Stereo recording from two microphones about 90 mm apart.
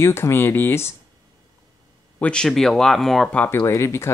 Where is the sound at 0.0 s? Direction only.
30° left (ahead or behind).